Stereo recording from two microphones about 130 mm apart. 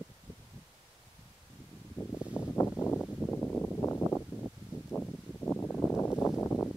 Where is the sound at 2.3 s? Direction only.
15° left (ahead or behind).